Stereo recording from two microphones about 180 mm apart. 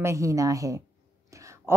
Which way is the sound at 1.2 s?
15° right (ahead or behind).